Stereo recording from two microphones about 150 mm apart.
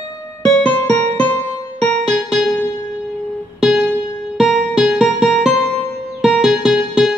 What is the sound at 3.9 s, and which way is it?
Music, centre (ahead or behind).